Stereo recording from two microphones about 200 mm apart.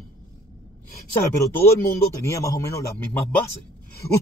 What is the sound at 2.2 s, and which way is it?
Speech, 15° left (ahead or behind).